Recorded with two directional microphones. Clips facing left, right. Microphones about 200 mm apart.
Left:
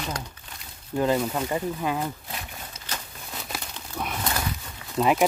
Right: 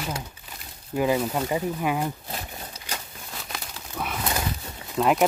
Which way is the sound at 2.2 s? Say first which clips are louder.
Right 2 dB; 40° right (ahead or behind).